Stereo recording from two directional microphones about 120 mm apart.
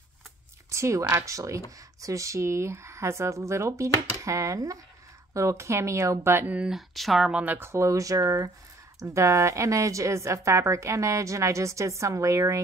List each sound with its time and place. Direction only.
0.7 s a woman's voice: 25° right (ahead or behind)